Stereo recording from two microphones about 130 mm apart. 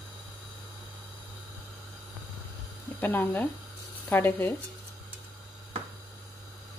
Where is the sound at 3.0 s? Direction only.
15° left (ahead or behind).